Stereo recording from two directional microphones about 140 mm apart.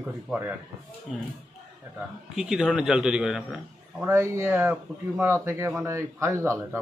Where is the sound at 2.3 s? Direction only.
5° right (ahead or behind).